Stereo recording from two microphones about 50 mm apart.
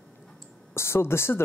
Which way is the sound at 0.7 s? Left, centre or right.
Left.